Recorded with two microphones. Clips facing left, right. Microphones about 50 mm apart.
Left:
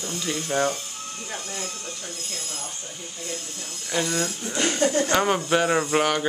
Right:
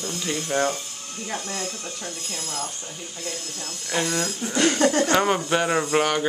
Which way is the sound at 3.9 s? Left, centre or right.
Centre.